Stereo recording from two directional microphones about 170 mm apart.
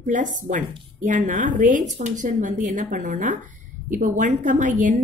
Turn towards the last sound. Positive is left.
turn(degrees=-50)  # may be behind; listen again after turning